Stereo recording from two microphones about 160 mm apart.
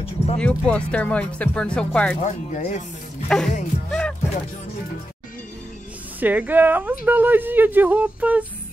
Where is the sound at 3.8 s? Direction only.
5° left (ahead or behind).